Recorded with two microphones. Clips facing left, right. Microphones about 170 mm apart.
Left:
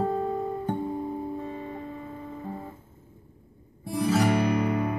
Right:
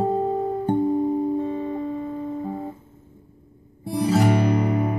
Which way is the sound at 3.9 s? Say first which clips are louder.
Right 4 dB; 30° right (ahead or behind).